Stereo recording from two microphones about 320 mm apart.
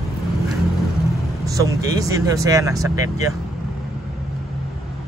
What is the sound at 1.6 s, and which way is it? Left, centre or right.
Speech, centre.